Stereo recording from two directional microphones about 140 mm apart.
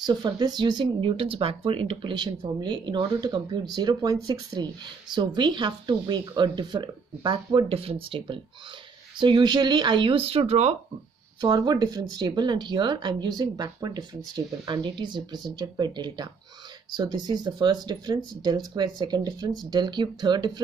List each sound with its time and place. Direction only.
0.0 s speech: 30° right (ahead or behind); by 10.8 s 50° right (ahead or behind)
11.4 s speech: 30° right (ahead or behind)